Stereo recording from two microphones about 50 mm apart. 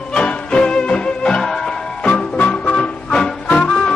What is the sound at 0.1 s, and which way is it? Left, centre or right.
Music, centre.